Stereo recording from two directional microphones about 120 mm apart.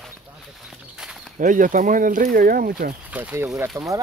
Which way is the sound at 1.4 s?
90° right.